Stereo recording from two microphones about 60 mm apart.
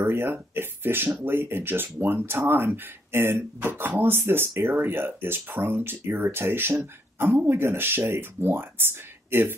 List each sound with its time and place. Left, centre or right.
0.0 s speech: right